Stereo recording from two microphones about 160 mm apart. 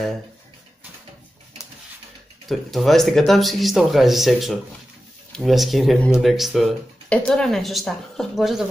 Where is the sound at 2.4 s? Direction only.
Centre (ahead or behind).